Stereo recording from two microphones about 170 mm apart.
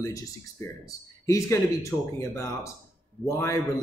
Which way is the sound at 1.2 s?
20° left (ahead or behind).